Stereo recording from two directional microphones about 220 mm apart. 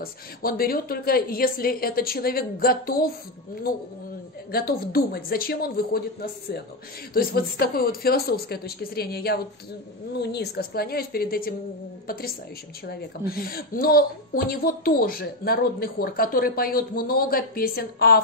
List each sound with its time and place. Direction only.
0.0 s a woman's voice: 40° left (ahead or behind)
4.5 s a woman's voice: 45° left (ahead or behind)
7.2 s a woman's voice: 45° left (ahead or behind)
12.8 s a woman's voice: 45° left (ahead or behind)